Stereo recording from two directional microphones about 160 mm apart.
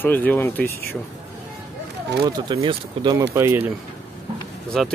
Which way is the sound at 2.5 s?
30° right (ahead or behind).